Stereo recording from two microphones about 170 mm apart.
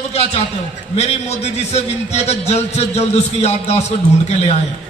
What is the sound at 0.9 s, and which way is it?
A man's voice, 40° left (ahead or behind).